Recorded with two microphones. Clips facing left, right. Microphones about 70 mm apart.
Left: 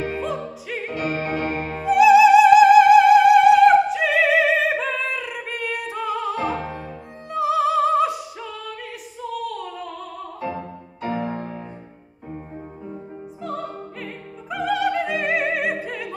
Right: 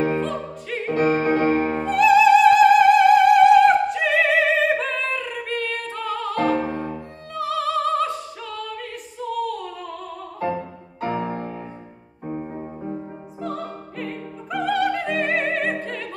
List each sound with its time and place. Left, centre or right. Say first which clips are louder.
0.2 s opera: right 1 dB; centre
0.9 s music: right 7 dB; right
1.9 s music: left 3 dB; centre
6.5 s music: right 5 dB; right
7.3 s opera: left 4 dB; centre
9.2 s singing: right 3 dB; centre
13.4 s opera: even; centre